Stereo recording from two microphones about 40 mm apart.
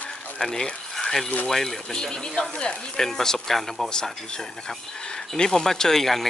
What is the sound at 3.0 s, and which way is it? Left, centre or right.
Speech, centre.